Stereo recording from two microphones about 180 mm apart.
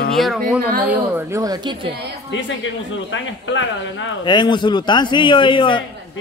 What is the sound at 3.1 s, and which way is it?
Speech, 90° left.